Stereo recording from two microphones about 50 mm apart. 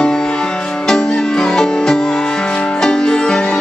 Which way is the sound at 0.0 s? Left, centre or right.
Centre.